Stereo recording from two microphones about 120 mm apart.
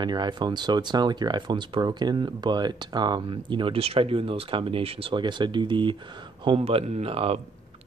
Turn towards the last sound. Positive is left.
turn(degrees=-55)  # may be behind; listen again after turning